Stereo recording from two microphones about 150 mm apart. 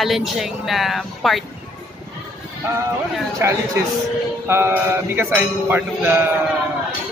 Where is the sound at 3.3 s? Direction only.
20° right (ahead or behind).